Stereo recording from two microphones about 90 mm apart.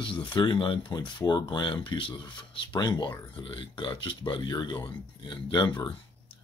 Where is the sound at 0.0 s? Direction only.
60° left (ahead or behind).